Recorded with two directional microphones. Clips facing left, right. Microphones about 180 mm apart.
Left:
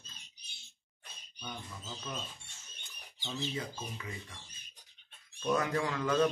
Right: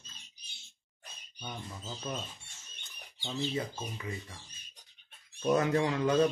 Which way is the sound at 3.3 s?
30° right (ahead or behind).